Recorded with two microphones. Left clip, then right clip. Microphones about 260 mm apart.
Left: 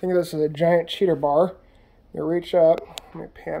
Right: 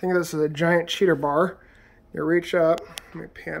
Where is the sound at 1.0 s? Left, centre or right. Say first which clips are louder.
Left 1 dB; right.